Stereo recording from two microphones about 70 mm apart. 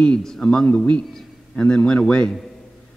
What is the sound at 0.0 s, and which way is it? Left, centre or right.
A man's voice, centre.